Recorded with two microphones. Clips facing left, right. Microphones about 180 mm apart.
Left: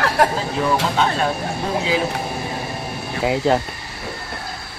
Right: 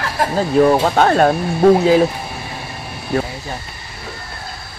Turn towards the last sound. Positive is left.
turn(degrees=85)